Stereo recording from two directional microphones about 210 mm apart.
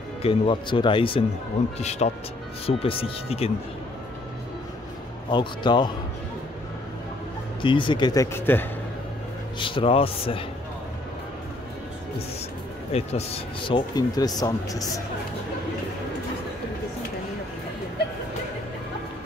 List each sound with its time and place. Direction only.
0.2 s speech: 25° left (ahead or behind)
5.3 s speech: 20° left (ahead or behind)
7.6 s speech: 25° left (ahead or behind)
9.6 s speech: 25° left (ahead or behind)
12.9 s speech: 30° left (ahead or behind)